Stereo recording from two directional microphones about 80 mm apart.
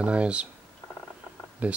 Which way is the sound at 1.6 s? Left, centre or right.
Centre.